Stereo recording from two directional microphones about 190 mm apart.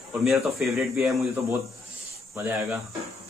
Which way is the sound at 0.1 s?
Centre (ahead or behind).